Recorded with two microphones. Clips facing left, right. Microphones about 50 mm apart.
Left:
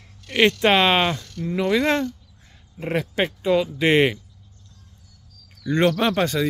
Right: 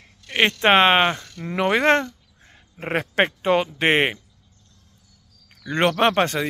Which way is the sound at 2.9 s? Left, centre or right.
Right.